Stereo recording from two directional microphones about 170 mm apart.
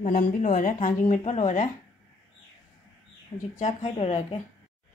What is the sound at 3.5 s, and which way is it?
Speech, 45° left (ahead or behind).